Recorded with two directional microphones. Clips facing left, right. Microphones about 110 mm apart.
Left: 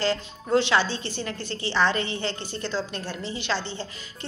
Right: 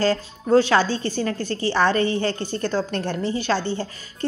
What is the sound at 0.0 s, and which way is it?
A woman's voice, 40° right (ahead or behind).